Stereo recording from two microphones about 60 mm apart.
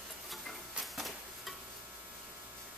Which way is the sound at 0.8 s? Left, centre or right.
Centre.